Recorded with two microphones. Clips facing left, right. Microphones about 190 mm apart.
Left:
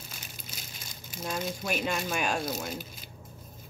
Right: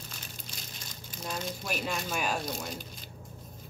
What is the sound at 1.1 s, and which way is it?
Speech, 5° left (ahead or behind).